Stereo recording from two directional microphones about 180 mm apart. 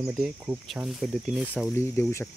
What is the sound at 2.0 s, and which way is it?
Speech, 15° left (ahead or behind).